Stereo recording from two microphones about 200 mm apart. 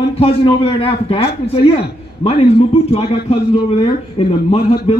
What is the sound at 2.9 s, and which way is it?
A man's voice, 30° left (ahead or behind).